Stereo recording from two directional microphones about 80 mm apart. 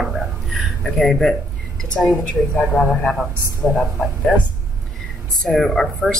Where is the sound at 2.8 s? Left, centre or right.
Left.